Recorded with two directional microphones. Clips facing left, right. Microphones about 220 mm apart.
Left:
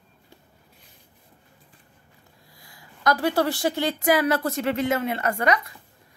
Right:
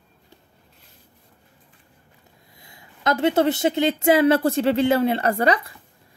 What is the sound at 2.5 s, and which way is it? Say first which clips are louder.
Speech: right 1 dB; 25° right (ahead or behind).